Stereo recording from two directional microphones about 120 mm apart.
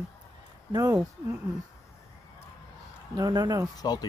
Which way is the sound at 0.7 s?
35° right (ahead or behind).